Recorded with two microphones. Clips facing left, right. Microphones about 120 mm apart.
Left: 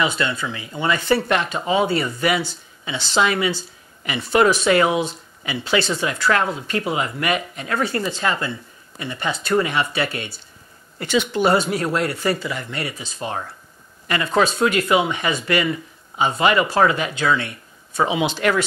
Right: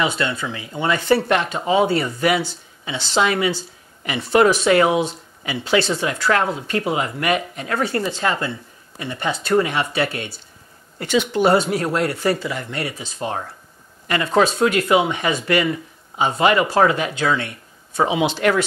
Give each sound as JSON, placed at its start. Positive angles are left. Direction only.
{"t": 0.0, "sound": "speech", "side_deg": -45}
{"t": 11.3, "sound": "speech", "side_deg": -50}
{"t": 18.2, "sound": "speech", "side_deg": -55}